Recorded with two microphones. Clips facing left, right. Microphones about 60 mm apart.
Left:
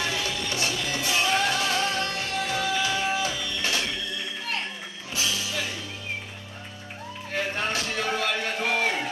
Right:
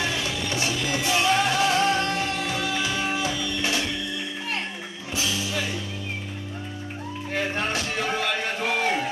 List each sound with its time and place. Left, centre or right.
0.0 s music: centre
5.1 s music: centre
7.3 s music: centre